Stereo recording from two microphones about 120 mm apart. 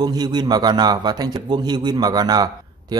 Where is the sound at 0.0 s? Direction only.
35° right (ahead or behind).